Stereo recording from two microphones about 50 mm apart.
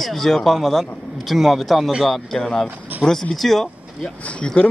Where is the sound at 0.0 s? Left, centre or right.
Centre.